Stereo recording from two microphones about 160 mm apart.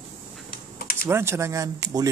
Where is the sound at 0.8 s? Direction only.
65° left (ahead or behind).